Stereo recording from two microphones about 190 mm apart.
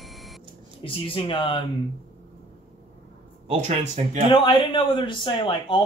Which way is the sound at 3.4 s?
35° right (ahead or behind).